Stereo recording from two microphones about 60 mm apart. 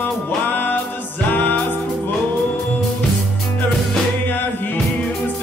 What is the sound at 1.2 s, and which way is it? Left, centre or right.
Music, left.